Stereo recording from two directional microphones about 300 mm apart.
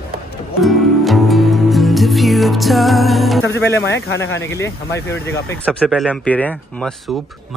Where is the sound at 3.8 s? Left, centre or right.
Left.